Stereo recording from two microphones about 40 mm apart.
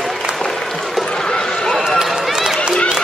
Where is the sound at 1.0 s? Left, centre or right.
Centre.